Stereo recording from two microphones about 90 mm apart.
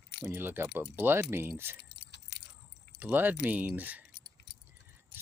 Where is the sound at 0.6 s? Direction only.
15° right (ahead or behind).